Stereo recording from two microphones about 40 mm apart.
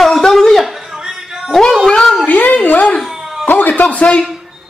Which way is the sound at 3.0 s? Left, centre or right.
Centre.